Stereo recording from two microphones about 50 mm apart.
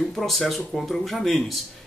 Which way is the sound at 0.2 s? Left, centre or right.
Centre.